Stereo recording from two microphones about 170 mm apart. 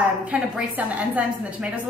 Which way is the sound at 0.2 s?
5° right (ahead or behind).